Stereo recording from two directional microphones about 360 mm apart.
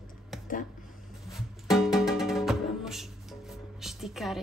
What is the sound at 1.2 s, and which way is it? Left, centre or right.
Music, centre.